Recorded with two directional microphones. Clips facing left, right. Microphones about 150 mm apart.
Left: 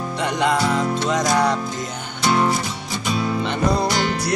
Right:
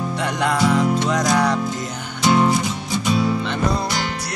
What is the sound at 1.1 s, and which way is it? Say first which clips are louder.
Music: even; 5° left (ahead or behind).